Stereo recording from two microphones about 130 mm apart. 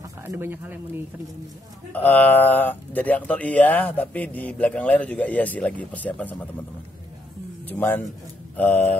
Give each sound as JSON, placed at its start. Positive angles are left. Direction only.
{"t": 0.3, "sound": "speech", "side_deg": -15}
{"t": 1.9, "sound": "speech", "side_deg": 15}
{"t": 7.6, "sound": "speech", "side_deg": 15}